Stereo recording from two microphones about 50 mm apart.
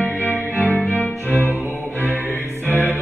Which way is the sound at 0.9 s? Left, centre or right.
Left.